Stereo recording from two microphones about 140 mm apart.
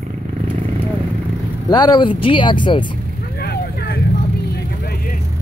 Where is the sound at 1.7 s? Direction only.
30° left (ahead or behind).